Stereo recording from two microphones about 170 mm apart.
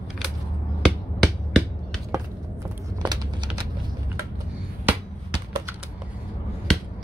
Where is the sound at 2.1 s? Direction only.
20° right (ahead or behind).